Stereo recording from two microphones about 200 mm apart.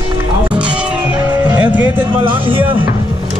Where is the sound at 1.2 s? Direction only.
15° right (ahead or behind).